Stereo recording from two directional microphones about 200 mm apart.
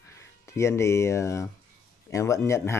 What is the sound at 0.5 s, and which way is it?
Speech, 15° left (ahead or behind).